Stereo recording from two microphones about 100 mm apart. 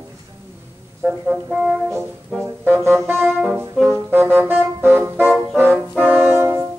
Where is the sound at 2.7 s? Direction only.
25° right (ahead or behind).